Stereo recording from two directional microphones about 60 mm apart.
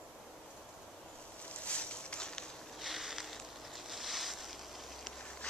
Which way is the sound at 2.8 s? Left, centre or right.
Centre.